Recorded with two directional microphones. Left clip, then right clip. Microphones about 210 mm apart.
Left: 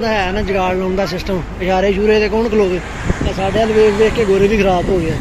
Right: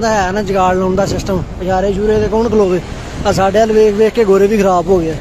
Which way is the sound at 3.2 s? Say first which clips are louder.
Right 6 dB; 30° right (ahead or behind).